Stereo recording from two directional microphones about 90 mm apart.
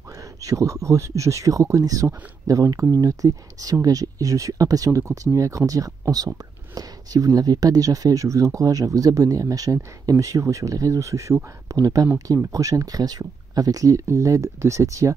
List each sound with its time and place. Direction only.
0.2 s speech: 40° right (ahead or behind)